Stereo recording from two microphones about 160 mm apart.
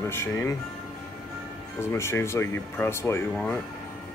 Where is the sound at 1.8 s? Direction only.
15° left (ahead or behind).